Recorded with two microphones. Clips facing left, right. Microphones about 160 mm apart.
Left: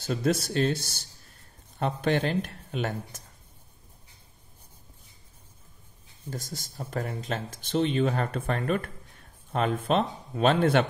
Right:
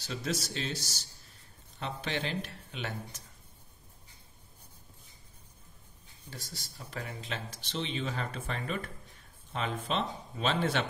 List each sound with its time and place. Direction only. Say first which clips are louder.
0.0 s speech: left 9 dB; 50° left (ahead or behind)
6.3 s speech: left 9 dB; 45° left (ahead or behind)